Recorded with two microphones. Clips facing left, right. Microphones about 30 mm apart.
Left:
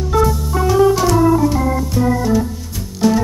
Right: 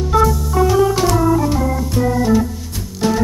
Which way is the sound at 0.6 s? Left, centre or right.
Centre.